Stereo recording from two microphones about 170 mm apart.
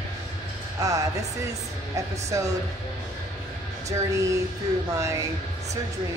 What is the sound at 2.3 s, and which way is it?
Speech, 20° right (ahead or behind).